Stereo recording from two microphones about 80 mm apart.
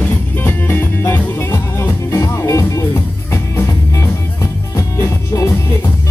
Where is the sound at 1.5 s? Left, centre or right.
Left.